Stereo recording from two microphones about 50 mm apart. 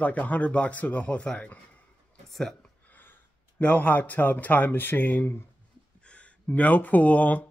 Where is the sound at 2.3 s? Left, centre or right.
Centre.